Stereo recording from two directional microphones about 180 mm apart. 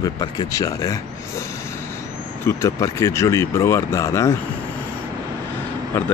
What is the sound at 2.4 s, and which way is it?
Speech, 15° left (ahead or behind).